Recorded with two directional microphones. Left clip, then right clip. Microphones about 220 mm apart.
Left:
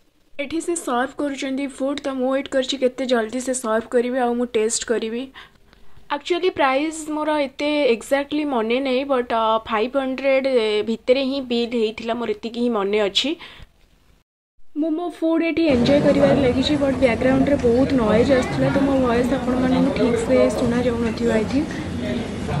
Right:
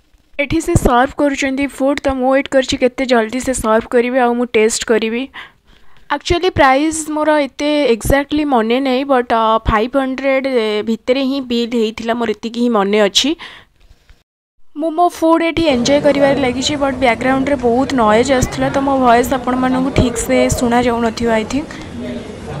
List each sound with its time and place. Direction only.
0.4 s a woman's voice: 45° right (ahead or behind)
15.0 s a woman's voice: 55° right (ahead or behind)